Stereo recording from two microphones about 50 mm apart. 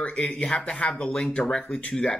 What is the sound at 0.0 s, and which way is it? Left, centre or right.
Speech, left.